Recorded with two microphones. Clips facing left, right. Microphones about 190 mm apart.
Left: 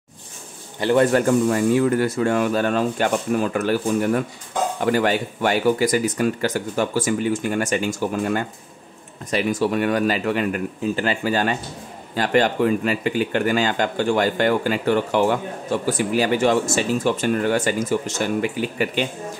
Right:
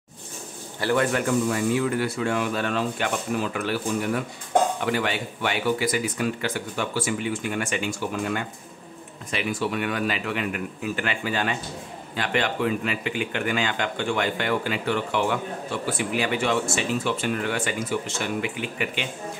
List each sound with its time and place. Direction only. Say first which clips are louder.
0.7 s a man's voice: left 6 dB; 20° left (ahead or behind)
1.1 s speech: left 6 dB; 40° left (ahead or behind)